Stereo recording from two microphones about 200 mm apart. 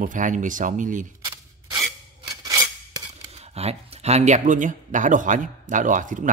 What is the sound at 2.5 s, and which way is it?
Filing, 15° right (ahead or behind).